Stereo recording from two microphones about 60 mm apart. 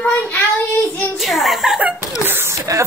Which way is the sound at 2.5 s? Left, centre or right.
Right.